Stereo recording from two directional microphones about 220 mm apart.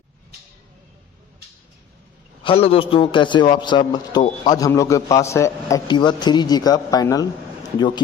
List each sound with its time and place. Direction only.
2.4 s a man's voice: 25° left (ahead or behind)